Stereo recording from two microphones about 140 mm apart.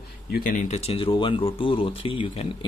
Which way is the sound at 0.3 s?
70° left (ahead or behind).